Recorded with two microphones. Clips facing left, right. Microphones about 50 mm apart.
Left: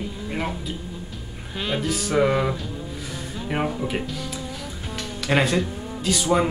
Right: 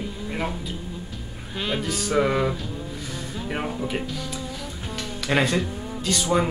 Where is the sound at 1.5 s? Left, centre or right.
Centre.